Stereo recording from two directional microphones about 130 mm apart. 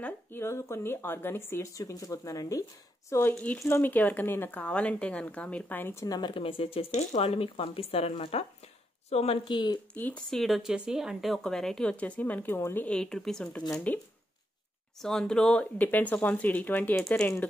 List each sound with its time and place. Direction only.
0.0 s speech: 20° left (ahead or behind)
6.0 s speech: 30° left (ahead or behind)
6.9 s a woman's voice: 60° left (ahead or behind); by 9.8 s 35° left (ahead or behind)
9.9 s speech: 15° left (ahead or behind)
10.3 s a woman's voice: centre (ahead or behind)